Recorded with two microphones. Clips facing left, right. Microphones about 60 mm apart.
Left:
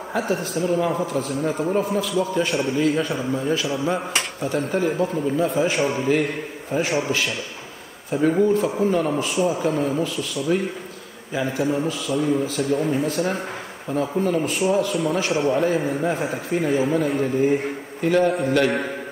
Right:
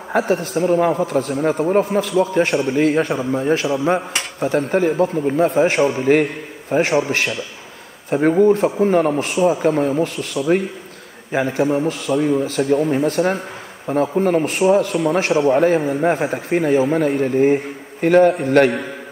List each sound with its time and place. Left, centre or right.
0.3 s a man's voice: right